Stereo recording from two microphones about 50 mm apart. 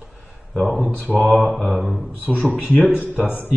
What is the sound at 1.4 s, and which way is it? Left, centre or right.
Speech, centre.